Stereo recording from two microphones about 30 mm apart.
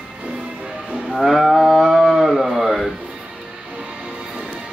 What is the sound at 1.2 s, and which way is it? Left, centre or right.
Cattle, centre.